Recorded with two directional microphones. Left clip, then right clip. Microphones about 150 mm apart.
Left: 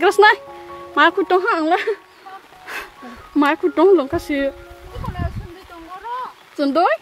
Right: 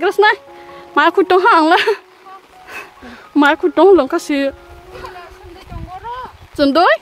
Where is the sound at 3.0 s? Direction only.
25° right (ahead or behind).